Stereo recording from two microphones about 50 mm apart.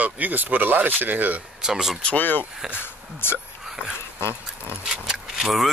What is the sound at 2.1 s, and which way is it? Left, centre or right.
Speech, left.